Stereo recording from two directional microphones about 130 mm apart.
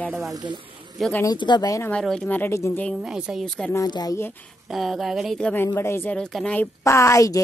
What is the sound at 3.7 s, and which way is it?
Speech, 30° left (ahead or behind).